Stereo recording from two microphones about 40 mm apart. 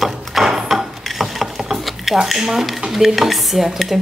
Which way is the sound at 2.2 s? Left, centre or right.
Centre.